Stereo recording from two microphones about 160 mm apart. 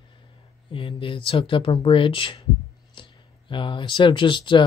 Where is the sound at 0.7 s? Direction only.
35° left (ahead or behind).